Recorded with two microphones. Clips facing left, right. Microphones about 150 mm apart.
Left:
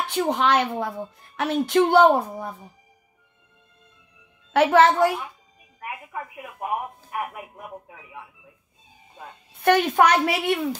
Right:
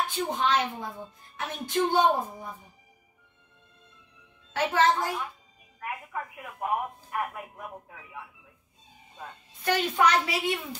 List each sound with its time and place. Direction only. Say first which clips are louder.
0.0 s a woman's voice: left 5 dB; 75° left (ahead or behind)
4.5 s a woman's voice: left 8 dB; 75° left (ahead or behind)
5.8 s speech: left 1 dB; 15° left (ahead or behind)
9.5 s a woman's voice: left 8 dB; 60° left (ahead or behind)